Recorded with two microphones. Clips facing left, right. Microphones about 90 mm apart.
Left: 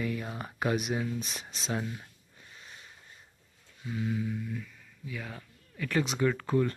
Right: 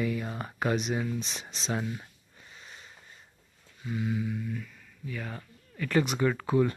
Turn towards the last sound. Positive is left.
turn(degrees=-10)  # may be behind; listen again after turning